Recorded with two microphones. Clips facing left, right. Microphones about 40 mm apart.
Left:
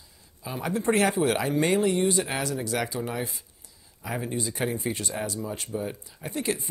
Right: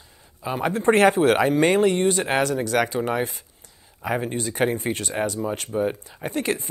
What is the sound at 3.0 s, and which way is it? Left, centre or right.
Speech, right.